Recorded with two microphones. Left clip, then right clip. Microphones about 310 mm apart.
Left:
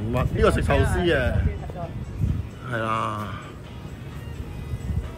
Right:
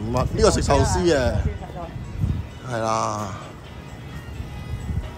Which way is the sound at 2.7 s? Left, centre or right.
Centre.